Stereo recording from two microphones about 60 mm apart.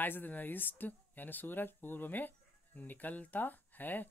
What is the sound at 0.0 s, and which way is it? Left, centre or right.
Speech, left.